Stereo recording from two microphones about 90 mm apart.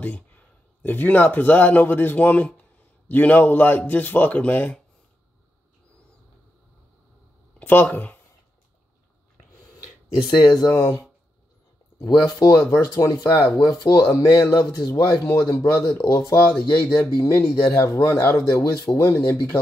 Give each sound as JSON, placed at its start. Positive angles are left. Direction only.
{"t": 0.8, "sound": "speech", "side_deg": 20}
{"t": 7.5, "sound": "speech", "side_deg": 20}
{"t": 10.2, "sound": "speech", "side_deg": 50}
{"t": 10.8, "sound": "speech", "side_deg": 35}
{"t": 12.3, "sound": "speech", "side_deg": 40}
{"t": 13.1, "sound": "speech", "side_deg": 50}
{"t": 15.0, "sound": "speech", "side_deg": 25}